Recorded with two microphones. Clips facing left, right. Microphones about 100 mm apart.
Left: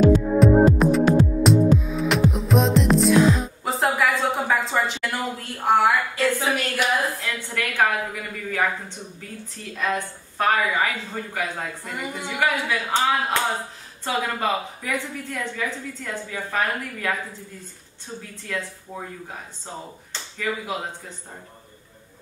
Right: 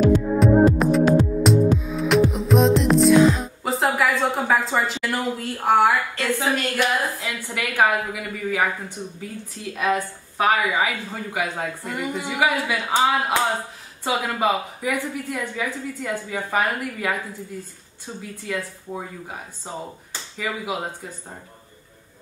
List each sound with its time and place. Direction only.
0.4 s music: centre (ahead or behind)
7.2 s a woman's voice: 10° right (ahead or behind)
18.9 s a woman's voice: 15° right (ahead or behind)